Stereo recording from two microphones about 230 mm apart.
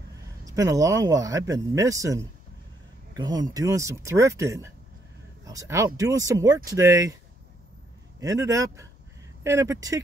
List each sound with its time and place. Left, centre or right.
0.5 s speech: centre
8.2 s speech: centre